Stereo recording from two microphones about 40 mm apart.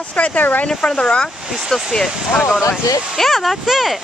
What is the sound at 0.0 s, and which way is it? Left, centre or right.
Speech, left.